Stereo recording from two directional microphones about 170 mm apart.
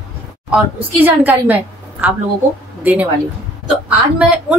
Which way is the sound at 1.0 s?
10° right (ahead or behind).